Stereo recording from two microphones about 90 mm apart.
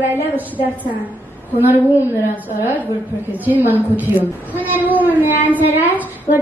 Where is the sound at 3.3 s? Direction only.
20° right (ahead or behind).